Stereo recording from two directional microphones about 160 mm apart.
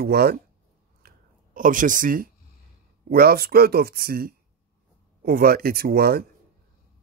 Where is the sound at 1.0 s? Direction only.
60° right (ahead or behind).